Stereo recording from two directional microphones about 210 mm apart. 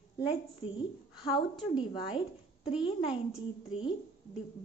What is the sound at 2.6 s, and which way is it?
Speech, 30° left (ahead or behind).